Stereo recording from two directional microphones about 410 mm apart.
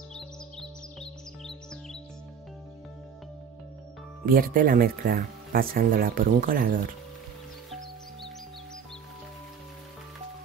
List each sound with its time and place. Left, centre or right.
4.3 s speech: right